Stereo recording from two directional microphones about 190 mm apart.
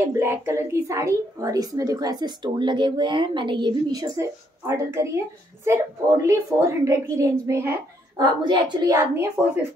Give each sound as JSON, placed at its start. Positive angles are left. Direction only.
{"t": 0.1, "sound": "a woman's voice", "side_deg": -15}